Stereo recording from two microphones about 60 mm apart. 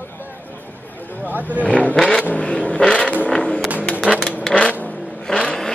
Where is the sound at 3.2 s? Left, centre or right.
Centre.